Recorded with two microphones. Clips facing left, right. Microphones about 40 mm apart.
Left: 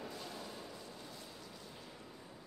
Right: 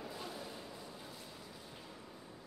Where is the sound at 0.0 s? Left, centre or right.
Centre.